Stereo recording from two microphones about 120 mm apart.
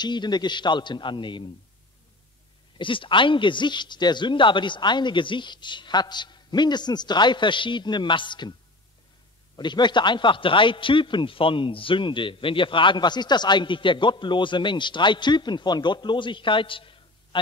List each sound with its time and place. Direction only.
0.0 s a man's voice: 35° left (ahead or behind)
2.8 s a man's voice: 45° left (ahead or behind)
9.6 s a man's voice: 40° left (ahead or behind)